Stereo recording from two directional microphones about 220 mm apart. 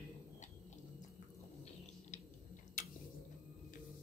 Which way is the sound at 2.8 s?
35° left (ahead or behind).